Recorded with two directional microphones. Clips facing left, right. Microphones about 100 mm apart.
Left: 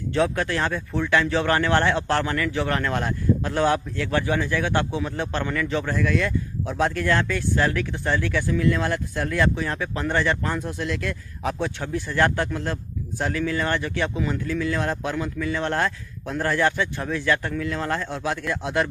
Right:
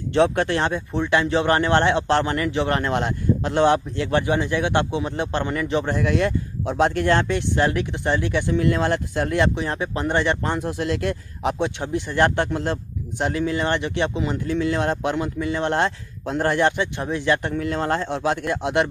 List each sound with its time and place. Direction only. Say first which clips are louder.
0.1 s a man's voice: right 4 dB; 30° right (ahead or behind)